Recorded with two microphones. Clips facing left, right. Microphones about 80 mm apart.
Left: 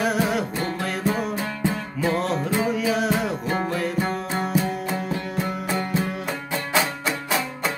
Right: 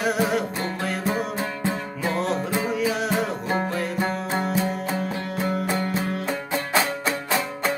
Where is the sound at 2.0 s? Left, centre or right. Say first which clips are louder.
Left 2 dB; centre.